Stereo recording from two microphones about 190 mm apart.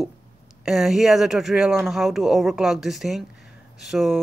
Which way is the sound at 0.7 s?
Centre (ahead or behind).